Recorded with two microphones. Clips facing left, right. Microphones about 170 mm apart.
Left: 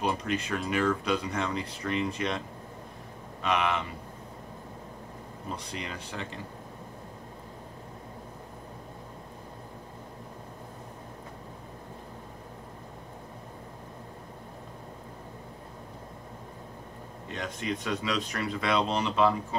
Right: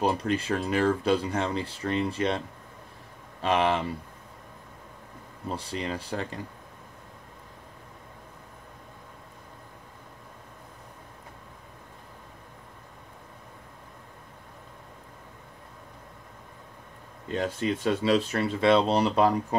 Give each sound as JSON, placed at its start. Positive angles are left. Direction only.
{"t": 0.0, "sound": "speech", "side_deg": -30}
{"t": 3.4, "sound": "speech", "side_deg": -30}
{"t": 5.7, "sound": "speech", "side_deg": -35}
{"t": 17.3, "sound": "speech", "side_deg": -30}